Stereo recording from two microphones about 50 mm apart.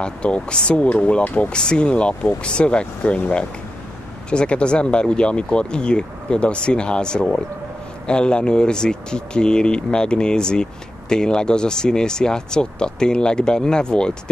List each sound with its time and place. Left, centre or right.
0.0 s speech: centre